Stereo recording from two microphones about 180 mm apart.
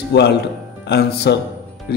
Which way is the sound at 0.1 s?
65° left (ahead or behind).